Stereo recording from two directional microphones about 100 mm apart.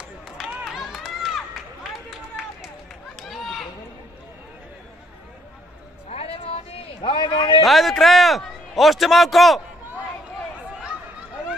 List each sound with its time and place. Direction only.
0.4 s run: centre (ahead or behind)
6.0 s a sound: 85° left; by 7.6 s 55° left (ahead or behind)
7.6 s a man's voice: centre (ahead or behind)